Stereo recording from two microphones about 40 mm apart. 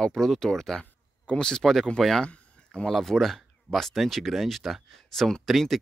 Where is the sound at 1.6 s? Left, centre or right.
Centre.